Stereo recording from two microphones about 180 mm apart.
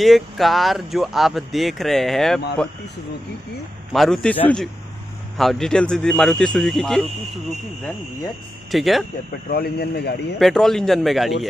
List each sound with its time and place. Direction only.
0.0 s speech: centre (ahead or behind)
3.9 s speech: centre (ahead or behind)
8.7 s speech: centre (ahead or behind)
9.5 s a man's voice: 60° left (ahead or behind)
10.4 s speech: centre (ahead or behind)